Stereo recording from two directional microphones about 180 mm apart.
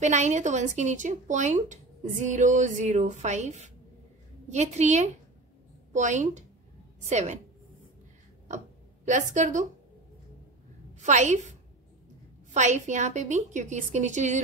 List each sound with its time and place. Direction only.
0.0 s a woman's voice: 40° right (ahead or behind)
9.0 s a woman's voice: 40° right (ahead or behind)
11.0 s a woman's voice: 40° right (ahead or behind)
12.5 s a woman's voice: 40° right (ahead or behind)